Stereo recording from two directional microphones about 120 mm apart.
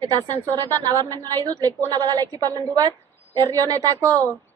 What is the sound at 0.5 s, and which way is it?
A woman's voice, 30° right (ahead or behind).